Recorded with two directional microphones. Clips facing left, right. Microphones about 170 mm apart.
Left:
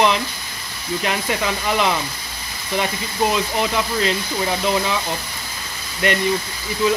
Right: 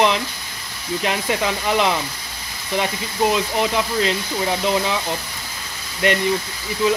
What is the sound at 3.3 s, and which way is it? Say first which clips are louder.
Speech: right 1 dB; 20° right (ahead or behind).